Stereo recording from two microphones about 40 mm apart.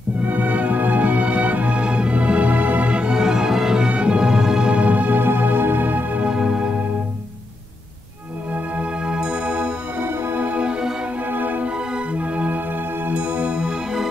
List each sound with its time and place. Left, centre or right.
0.2 s music: right
2.9 s music: right
3.9 s music: right
4.2 s music: centre
4.8 s music: right
5.2 s music: right
6.2 s music: right
9.0 s music: right
9.9 s music: right
10.6 s music: right
11.2 s music: right
11.6 s music: right
12.2 s music: right